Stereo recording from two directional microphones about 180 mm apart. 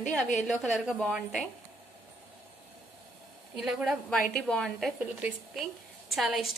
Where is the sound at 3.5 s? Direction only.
5° right (ahead or behind).